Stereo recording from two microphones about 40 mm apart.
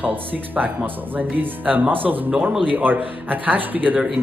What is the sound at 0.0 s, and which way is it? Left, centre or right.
Speech, right.